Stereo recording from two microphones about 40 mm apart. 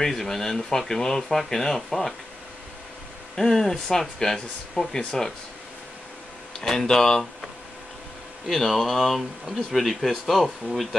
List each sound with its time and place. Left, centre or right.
0.0 s speech: centre
3.3 s speech: centre
6.6 s speech: centre
6.9 s speech: centre
8.5 s speech: centre